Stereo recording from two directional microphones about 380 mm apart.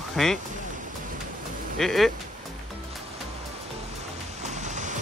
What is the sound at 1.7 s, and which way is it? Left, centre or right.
Speech, centre.